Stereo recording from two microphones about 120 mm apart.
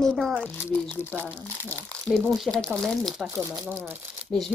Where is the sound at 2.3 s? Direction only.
Centre (ahead or behind).